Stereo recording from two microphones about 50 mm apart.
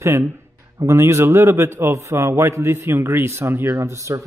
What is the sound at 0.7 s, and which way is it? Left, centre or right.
A man's voice, right.